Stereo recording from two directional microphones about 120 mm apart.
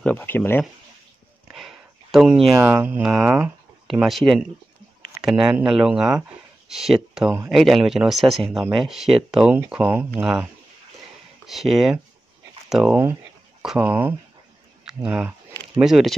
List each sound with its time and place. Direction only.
0.0 s speech: 10° left (ahead or behind)
1.5 s a sound: centre (ahead or behind)
2.6 s speech: 15° right (ahead or behind)
3.0 s speech: centre (ahead or behind)
12.6 s a sound: 5° right (ahead or behind)
12.9 s speech: 20° right (ahead or behind); by 16.2 s centre (ahead or behind)